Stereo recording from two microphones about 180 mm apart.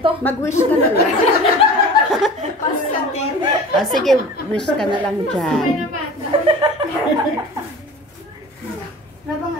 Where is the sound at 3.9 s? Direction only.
Centre (ahead or behind).